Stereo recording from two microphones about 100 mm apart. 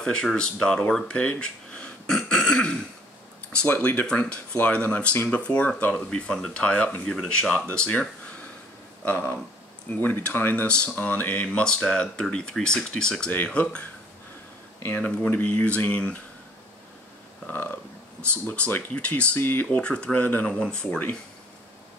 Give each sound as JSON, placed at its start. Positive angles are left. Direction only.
{"t": 0.0, "sound": "speech", "side_deg": 5}
{"t": 15.0, "sound": "speech", "side_deg": 10}
{"t": 17.5, "sound": "speech", "side_deg": 15}